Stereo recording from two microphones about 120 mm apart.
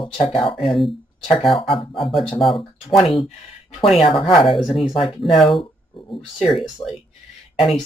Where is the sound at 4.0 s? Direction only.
50° left (ahead or behind).